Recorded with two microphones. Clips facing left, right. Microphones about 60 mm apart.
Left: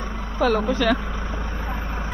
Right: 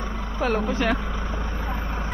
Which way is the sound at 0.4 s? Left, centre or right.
Centre.